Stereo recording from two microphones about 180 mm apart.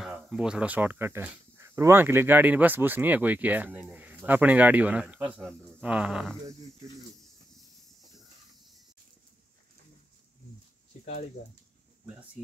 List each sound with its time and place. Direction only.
0.0 s speech: 5° right (ahead or behind)
5.8 s a sound: 5° right (ahead or behind)
11.4 s speech: 40° left (ahead or behind)